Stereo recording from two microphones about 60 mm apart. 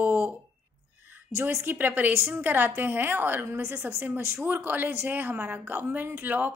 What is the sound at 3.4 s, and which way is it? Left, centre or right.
Speech, right.